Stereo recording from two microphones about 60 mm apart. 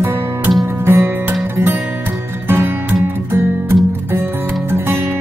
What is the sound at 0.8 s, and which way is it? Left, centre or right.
Music, right.